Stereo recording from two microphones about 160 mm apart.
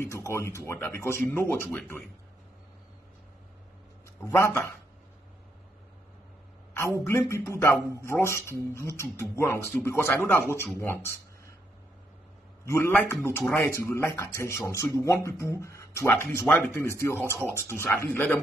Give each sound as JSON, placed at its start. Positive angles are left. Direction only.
{"t": 0.0, "sound": "speech", "side_deg": 15}
{"t": 4.3, "sound": "speech", "side_deg": 15}
{"t": 7.1, "sound": "speech", "side_deg": 15}
{"t": 12.6, "sound": "a man's voice", "side_deg": 15}